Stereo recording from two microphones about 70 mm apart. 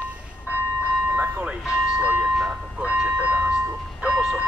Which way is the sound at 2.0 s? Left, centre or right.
Right.